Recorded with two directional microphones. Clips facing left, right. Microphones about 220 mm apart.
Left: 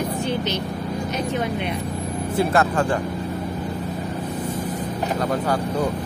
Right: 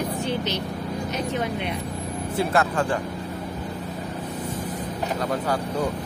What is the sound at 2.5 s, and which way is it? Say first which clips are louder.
Speech: left 1 dB; 45° left (ahead or behind).